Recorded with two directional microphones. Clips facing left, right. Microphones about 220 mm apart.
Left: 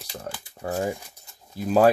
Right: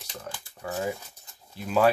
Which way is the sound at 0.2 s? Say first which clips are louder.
Left 2 dB; 40° left (ahead or behind).